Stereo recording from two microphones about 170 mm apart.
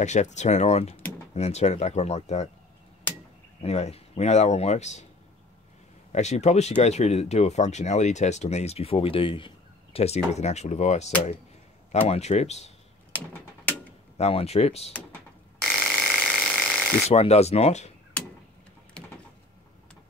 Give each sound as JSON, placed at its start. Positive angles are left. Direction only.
{"t": 0.0, "sound": "speech", "side_deg": 45}
{"t": 3.6, "sound": "speech", "side_deg": 40}
{"t": 6.1, "sound": "speech", "side_deg": 40}
{"t": 14.1, "sound": "speech", "side_deg": 40}
{"t": 15.6, "sound": "a sound", "side_deg": 5}
{"t": 17.1, "sound": "speech", "side_deg": 40}